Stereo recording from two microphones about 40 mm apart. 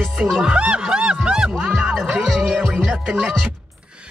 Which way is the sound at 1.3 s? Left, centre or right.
Right.